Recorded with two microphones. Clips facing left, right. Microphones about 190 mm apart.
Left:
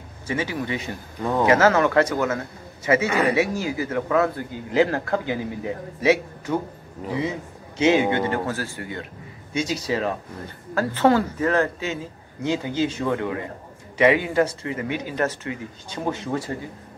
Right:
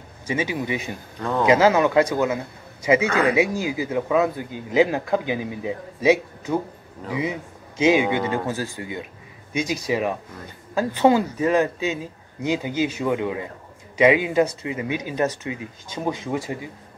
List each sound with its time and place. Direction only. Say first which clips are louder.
0.3 s speech: right 1 dB; 15° right (ahead or behind)